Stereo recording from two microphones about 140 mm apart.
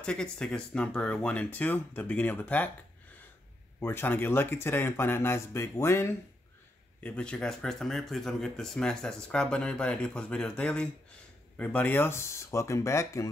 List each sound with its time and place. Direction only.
0.0 s speech: 5° left (ahead or behind)
3.8 s speech: 15° left (ahead or behind)